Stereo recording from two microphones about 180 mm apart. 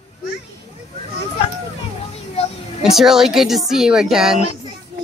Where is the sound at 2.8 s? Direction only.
Centre (ahead or behind).